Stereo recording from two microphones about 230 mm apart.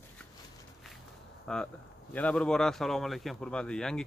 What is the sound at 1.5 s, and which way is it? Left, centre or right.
Speech, centre.